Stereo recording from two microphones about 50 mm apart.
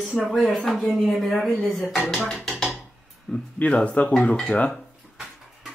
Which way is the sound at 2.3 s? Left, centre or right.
Centre.